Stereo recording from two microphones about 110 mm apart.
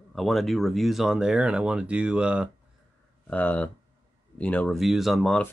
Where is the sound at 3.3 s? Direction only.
15° left (ahead or behind).